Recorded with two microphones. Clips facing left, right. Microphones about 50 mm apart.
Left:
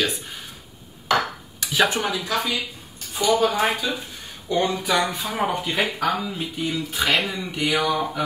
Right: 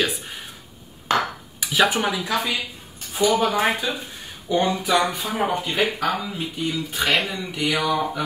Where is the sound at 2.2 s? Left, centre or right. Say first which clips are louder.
Right 1 dB; right.